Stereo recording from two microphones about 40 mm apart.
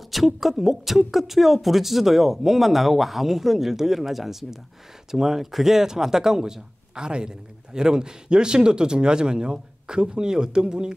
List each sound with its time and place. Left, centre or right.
0.1 s a woman's voice: centre